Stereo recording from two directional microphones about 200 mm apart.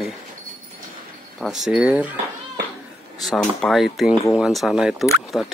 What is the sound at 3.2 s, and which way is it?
Speech, centre (ahead or behind).